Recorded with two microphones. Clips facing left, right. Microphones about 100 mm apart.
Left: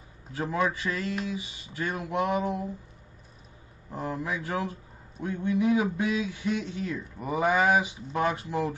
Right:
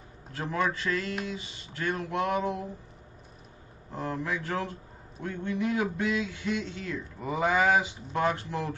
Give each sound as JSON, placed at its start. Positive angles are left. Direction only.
{"t": 0.3, "sound": "a man's voice", "side_deg": 10}
{"t": 3.9, "sound": "a man's voice", "side_deg": 10}